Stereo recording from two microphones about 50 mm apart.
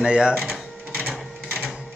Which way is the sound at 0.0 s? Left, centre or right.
Centre.